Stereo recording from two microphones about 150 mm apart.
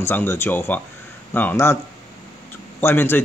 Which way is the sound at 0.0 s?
15° left (ahead or behind).